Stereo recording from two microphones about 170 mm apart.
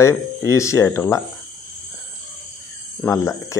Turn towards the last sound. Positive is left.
turn(degrees=15)  # may be behind; listen again after turning